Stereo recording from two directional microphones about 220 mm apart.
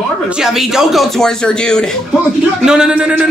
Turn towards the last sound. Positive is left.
turn(degrees=-5)  # may be behind; listen again after turning